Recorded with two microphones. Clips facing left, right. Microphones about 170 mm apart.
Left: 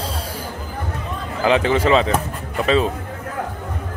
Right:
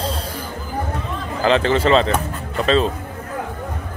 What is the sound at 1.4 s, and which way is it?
Speech, 10° left (ahead or behind).